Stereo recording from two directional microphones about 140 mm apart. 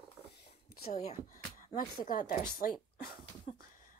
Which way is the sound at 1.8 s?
80° left.